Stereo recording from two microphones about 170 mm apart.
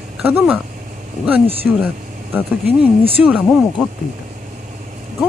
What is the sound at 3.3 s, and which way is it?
Speech, centre (ahead or behind).